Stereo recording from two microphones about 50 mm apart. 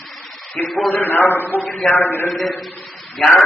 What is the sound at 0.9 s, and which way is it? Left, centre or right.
A man's voice, left.